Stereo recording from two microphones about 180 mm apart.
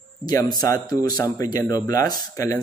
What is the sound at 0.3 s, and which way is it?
A man's voice, 20° left (ahead or behind).